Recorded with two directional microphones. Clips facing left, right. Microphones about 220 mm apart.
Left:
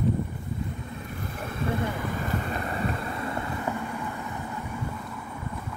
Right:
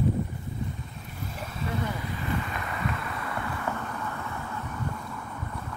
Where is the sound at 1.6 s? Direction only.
50° left (ahead or behind); by 4.1 s 15° left (ahead or behind).